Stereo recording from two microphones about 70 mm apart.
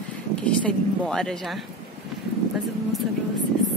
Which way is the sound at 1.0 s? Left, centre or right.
Centre.